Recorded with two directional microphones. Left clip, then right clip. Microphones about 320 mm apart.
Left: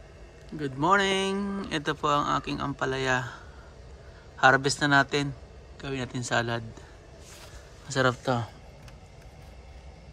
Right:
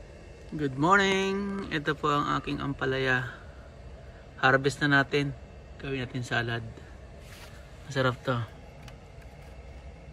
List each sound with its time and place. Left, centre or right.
0.6 s speech: centre
4.4 s speech: centre
7.9 s speech: centre